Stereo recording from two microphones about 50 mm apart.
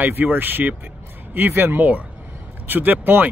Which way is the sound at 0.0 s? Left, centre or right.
Right.